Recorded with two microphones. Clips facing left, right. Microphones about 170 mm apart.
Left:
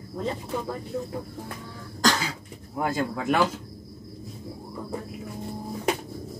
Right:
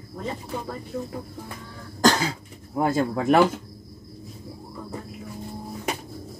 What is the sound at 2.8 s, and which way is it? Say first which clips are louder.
Speech: right 4 dB; 40° right (ahead or behind).